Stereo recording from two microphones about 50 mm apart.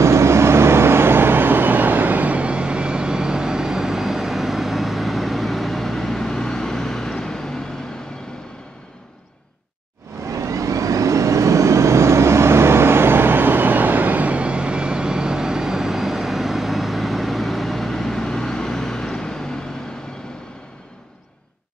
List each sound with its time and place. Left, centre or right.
0.0 s vehicle: right; by 7.6 s centre
10.2 s vehicle: right; by 19.6 s centre